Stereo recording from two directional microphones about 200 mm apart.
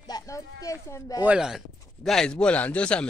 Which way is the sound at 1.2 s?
5° right (ahead or behind).